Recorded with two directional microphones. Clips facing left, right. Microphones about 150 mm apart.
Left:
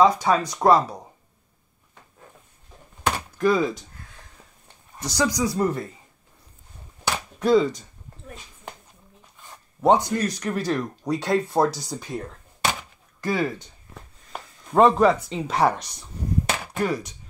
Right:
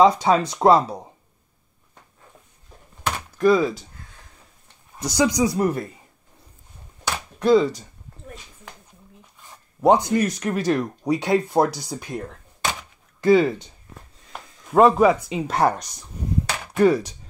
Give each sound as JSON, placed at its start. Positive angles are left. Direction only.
{"t": 0.0, "sound": "speech", "side_deg": -25}
{"t": 3.3, "sound": "speech", "side_deg": 0}
{"t": 4.9, "sound": "speech", "side_deg": -15}
{"t": 7.1, "sound": "a sound", "side_deg": 5}
{"t": 9.8, "sound": "speech", "side_deg": -15}
{"t": 14.7, "sound": "speech", "side_deg": -5}
{"t": 15.5, "sound": "speech", "side_deg": 0}
{"t": 16.8, "sound": "speech", "side_deg": -30}